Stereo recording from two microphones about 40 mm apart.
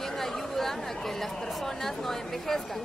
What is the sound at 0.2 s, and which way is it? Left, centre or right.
Speech, centre.